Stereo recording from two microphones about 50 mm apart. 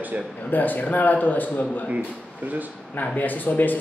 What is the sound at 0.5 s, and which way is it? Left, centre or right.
Speech, left.